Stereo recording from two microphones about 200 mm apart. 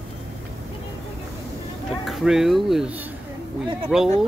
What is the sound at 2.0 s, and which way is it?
Speech, centre (ahead or behind).